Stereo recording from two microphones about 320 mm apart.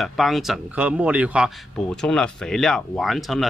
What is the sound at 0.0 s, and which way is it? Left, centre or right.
Speech, centre.